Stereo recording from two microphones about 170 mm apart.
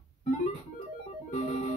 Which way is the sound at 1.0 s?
40° left (ahead or behind).